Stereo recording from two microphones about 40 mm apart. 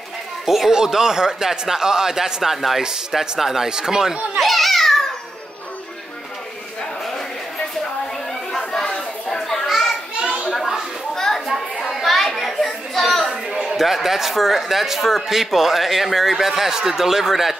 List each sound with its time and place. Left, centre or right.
0.5 s speech: centre
4.4 s children playing: centre
8.8 s a sound: centre
9.7 s children playing: centre
11.1 s children playing: centre
11.8 s children playing: centre
12.4 s speech: centre